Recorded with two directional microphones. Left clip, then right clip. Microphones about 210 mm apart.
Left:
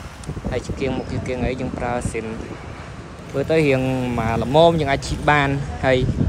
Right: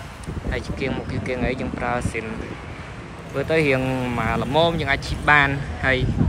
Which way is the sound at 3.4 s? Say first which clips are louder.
Left 2 dB; 20° left (ahead or behind).